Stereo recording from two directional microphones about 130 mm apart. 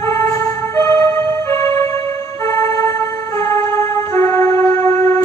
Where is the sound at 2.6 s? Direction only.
20° left (ahead or behind).